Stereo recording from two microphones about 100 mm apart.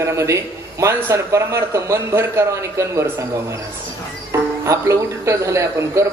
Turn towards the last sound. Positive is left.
turn(degrees=-30)  # may be behind; listen again after turning